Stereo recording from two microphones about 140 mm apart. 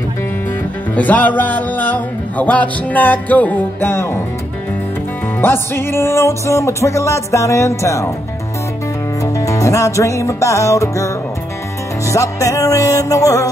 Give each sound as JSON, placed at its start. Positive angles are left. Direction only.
{"t": 0.9, "sound": "music", "side_deg": 10}
{"t": 5.4, "sound": "music", "side_deg": 15}
{"t": 9.2, "sound": "music", "side_deg": 25}
{"t": 12.1, "sound": "music", "side_deg": 25}